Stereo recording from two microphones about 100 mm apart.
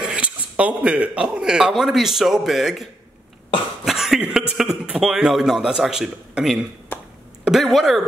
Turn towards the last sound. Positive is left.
turn(degrees=0)  # may be behind; listen again after turning